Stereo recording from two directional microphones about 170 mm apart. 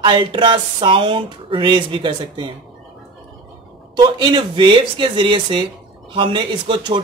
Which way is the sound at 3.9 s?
25° right (ahead or behind).